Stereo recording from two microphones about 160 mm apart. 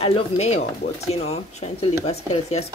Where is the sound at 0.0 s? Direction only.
40° left (ahead or behind).